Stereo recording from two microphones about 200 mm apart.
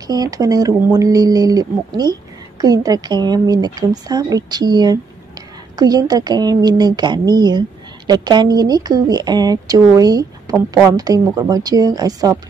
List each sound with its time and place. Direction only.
0.0 s speech: 20° right (ahead or behind)